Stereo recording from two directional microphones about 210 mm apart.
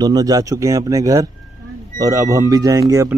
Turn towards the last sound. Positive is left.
turn(degrees=-15)  # may be behind; listen again after turning